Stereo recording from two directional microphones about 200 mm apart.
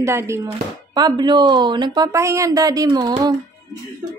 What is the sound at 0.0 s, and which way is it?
Speech, 15° right (ahead or behind).